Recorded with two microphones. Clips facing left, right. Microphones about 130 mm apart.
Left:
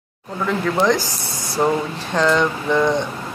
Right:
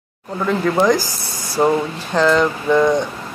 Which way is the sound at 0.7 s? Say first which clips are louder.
Right 1 dB; 5° right (ahead or behind).